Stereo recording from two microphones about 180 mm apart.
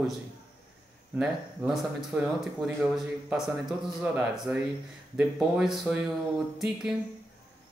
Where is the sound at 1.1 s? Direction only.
Centre (ahead or behind).